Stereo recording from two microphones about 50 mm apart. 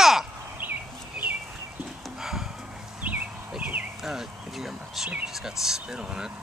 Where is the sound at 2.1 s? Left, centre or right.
Centre.